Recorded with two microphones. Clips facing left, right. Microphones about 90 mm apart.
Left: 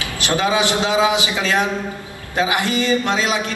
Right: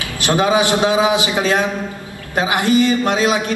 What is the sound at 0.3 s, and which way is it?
A man's voice, 20° right (ahead or behind).